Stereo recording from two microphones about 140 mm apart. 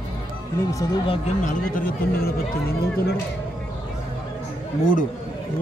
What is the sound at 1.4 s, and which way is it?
Speech, 70° left (ahead or behind).